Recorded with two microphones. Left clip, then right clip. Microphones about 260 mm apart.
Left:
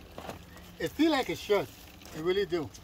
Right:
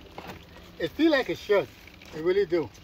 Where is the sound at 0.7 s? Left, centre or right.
Centre.